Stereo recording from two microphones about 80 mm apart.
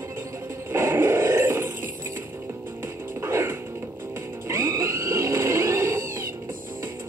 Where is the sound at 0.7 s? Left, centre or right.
Right.